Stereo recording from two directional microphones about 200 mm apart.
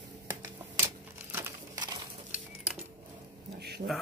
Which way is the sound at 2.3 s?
5° right (ahead or behind).